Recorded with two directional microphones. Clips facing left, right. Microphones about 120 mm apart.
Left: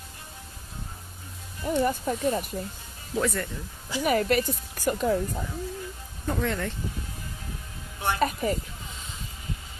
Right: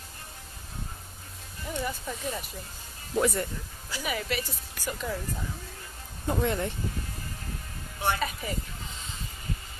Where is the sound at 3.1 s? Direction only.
20° right (ahead or behind).